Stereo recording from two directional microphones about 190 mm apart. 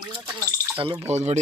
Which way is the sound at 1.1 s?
35° right (ahead or behind).